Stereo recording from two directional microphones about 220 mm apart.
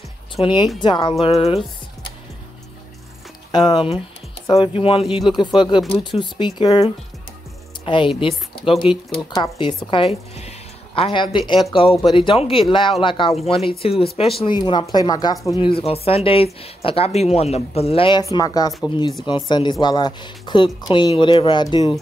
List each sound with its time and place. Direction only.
0.4 s speech: 20° left (ahead or behind)
3.5 s speech: 20° left (ahead or behind)
11.0 s speech: 20° left (ahead or behind)